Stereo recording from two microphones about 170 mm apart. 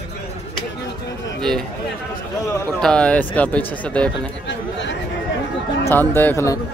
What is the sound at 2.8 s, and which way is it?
Speech, 5° left (ahead or behind).